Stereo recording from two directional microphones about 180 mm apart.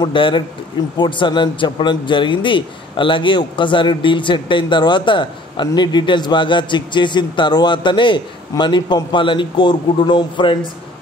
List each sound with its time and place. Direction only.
0.0 s speech: 25° left (ahead or behind)